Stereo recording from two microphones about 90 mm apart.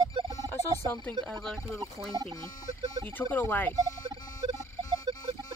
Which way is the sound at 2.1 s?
40° right (ahead or behind).